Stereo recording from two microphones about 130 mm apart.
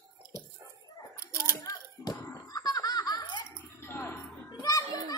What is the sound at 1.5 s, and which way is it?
Laughter, 25° left (ahead or behind).